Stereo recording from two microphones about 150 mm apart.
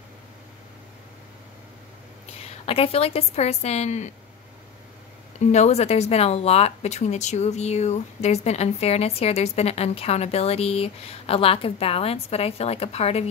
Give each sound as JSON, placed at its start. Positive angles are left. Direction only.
{"t": 2.6, "sound": "speech", "side_deg": 40}
{"t": 5.4, "sound": "speech", "side_deg": 50}